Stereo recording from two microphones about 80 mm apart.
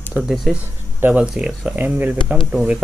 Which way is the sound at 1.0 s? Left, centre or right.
Centre.